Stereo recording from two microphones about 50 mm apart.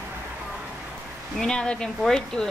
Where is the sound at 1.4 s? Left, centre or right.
Centre.